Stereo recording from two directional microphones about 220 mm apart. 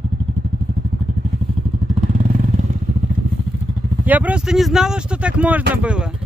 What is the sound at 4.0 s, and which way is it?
Speech, 5° right (ahead or behind).